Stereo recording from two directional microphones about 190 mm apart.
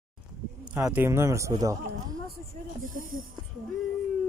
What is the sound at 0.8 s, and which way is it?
Speech, 10° right (ahead or behind).